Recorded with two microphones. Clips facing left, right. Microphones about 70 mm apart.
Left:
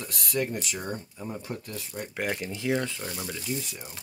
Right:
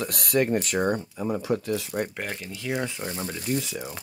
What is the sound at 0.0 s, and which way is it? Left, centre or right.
Speech, right.